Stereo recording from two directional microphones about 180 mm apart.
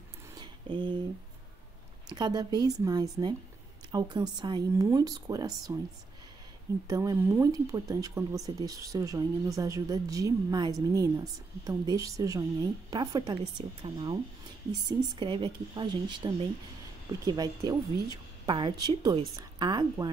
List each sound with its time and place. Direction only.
0.3 s a sound: 25° right (ahead or behind)
2.0 s speech: 20° right (ahead or behind)
6.9 s speech: 20° right (ahead or behind)